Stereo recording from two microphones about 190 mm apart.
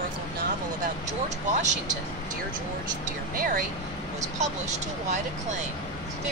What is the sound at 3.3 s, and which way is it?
Speech, 45° right (ahead or behind).